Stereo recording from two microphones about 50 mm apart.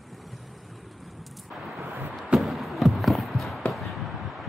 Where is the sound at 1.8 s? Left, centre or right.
Right.